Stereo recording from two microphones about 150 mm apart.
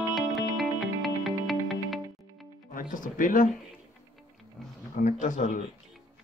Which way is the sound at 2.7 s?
65° left (ahead or behind).